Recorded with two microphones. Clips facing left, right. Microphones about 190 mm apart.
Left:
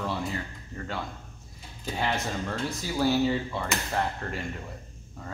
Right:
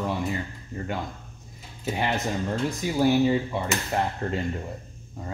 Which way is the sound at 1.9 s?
20° right (ahead or behind).